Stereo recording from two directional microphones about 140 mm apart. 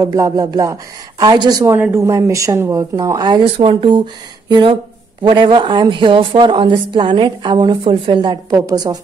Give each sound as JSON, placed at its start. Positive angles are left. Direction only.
{"t": 0.0, "sound": "speech", "side_deg": -25}
{"t": 3.5, "sound": "a woman's voice", "side_deg": -40}